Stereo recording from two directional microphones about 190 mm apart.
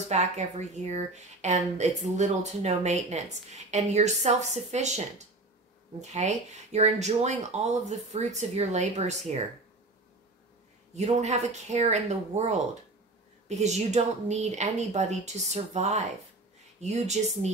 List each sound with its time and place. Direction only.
0.1 s speech: 35° right (ahead or behind)
11.0 s speech: 35° right (ahead or behind)